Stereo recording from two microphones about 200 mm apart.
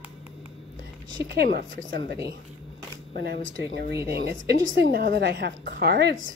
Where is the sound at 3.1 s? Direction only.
50° right (ahead or behind).